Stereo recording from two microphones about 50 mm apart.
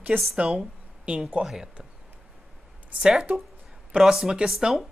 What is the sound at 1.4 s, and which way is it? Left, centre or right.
Speech, centre.